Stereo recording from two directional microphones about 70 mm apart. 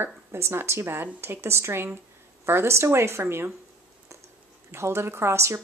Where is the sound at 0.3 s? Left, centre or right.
Right.